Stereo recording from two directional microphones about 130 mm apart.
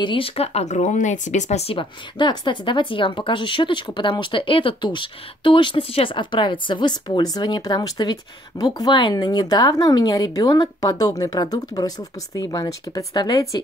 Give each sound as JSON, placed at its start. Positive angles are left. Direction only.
{"t": 0.0, "sound": "speech", "side_deg": 40}
{"t": 1.7, "sound": "speech", "side_deg": 40}